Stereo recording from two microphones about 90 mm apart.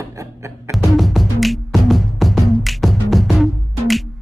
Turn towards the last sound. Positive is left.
turn(degrees=0)  # may be behind; listen again after turning